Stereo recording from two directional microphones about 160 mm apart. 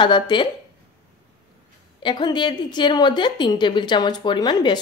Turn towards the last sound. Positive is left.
turn(degrees=25)  # may be behind; listen again after turning